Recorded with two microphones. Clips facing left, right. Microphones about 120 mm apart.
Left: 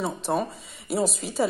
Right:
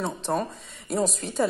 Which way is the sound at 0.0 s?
5° left (ahead or behind).